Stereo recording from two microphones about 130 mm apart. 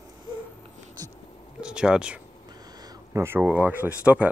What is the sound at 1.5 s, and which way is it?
Speech, 5° right (ahead or behind).